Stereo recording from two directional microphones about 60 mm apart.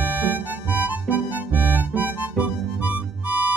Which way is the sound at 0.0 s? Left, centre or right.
Right.